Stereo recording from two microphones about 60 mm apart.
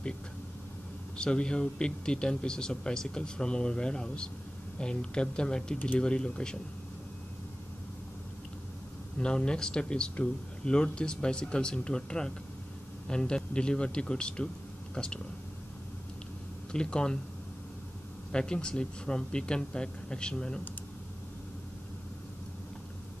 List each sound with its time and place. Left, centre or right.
1.1 s speech: centre
9.2 s speech: centre
16.7 s speech: centre
18.3 s speech: centre